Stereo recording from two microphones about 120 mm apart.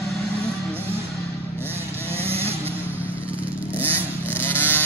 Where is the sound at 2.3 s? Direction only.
55° right (ahead or behind).